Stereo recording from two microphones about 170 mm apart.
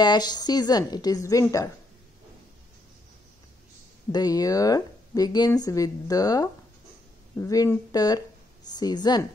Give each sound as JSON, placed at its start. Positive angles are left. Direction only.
{"t": 0.0, "sound": "a woman's voice", "side_deg": 25}
{"t": 4.1, "sound": "a woman's voice", "side_deg": 20}